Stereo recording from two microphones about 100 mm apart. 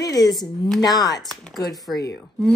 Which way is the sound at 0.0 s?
40° left (ahead or behind).